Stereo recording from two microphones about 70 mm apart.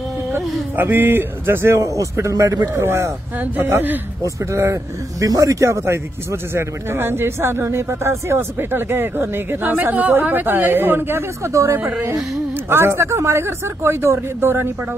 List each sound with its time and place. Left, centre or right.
0.7 s speech: right
2.1 s speech: right
2.7 s a man's voice: right
4.2 s speech: right